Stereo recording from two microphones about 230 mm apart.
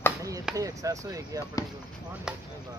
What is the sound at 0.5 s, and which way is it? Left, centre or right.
Speech, centre.